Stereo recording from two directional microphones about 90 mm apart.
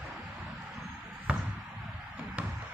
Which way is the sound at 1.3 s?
15° right (ahead or behind).